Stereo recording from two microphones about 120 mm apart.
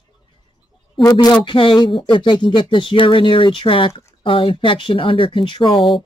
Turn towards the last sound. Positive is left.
turn(degrees=45)  # may be behind; listen again after turning